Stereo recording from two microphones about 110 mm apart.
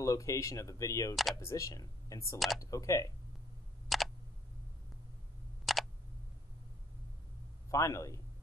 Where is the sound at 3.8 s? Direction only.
Centre (ahead or behind).